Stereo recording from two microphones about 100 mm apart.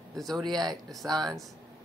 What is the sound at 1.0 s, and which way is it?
Speech, 40° right (ahead or behind).